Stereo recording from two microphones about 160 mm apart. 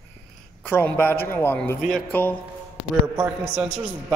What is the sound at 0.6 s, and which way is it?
A man's voice, 10° left (ahead or behind).